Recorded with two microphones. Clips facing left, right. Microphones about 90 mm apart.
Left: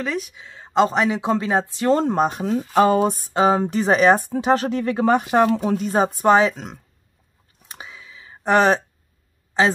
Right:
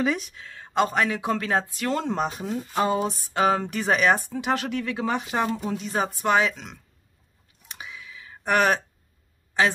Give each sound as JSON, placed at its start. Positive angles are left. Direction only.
{"t": 0.0, "sound": "speech", "side_deg": 0}
{"t": 0.3, "sound": "speech", "side_deg": 20}
{"t": 2.0, "sound": "speech", "side_deg": 45}
{"t": 2.4, "sound": "a sound", "side_deg": 75}
{"t": 3.3, "sound": "speech", "side_deg": 30}
{"t": 4.2, "sound": "speech", "side_deg": 40}
{"t": 5.5, "sound": "speech", "side_deg": 65}
{"t": 5.9, "sound": "speech", "side_deg": 35}
{"t": 7.6, "sound": "a sound", "side_deg": 35}